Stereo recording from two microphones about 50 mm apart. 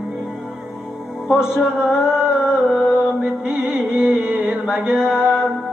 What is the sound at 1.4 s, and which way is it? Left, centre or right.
Music, centre.